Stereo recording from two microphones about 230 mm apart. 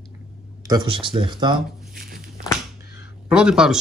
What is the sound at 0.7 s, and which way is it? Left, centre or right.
Speech, right.